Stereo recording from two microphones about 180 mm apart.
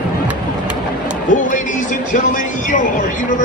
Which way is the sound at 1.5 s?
45° left (ahead or behind).